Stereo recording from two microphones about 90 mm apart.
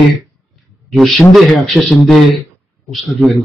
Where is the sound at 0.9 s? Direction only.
Centre (ahead or behind).